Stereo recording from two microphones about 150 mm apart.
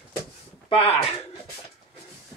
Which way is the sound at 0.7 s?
40° left (ahead or behind).